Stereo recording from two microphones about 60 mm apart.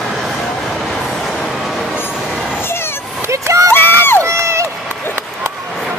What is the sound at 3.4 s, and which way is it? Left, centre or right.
Run, right.